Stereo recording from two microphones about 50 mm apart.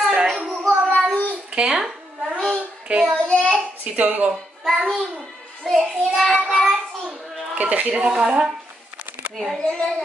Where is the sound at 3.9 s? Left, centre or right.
Right.